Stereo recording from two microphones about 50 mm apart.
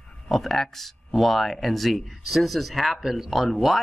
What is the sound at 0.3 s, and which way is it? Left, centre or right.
Speech, centre.